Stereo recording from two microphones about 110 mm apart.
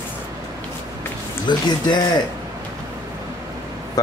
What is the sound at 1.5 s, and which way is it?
Speech, 45° left (ahead or behind).